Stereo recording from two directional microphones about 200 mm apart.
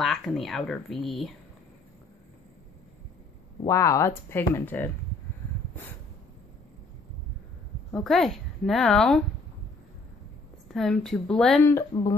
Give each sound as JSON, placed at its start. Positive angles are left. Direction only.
{"t": 0.0, "sound": "speech", "side_deg": 0}
{"t": 3.6, "sound": "speech", "side_deg": 15}
{"t": 7.9, "sound": "speech", "side_deg": 0}
{"t": 10.7, "sound": "speech", "side_deg": 0}
{"t": 11.9, "sound": "speech", "side_deg": 20}